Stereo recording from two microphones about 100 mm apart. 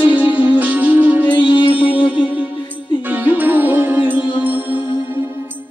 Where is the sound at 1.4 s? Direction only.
55° left (ahead or behind).